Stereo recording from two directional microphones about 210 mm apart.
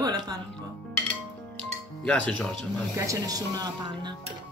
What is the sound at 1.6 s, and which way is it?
Music, 5° left (ahead or behind).